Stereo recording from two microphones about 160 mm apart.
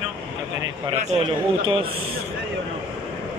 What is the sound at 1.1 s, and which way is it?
Speech, 35° right (ahead or behind).